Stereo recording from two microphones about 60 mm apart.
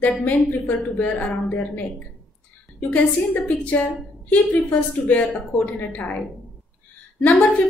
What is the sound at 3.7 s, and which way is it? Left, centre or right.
A woman's voice, left.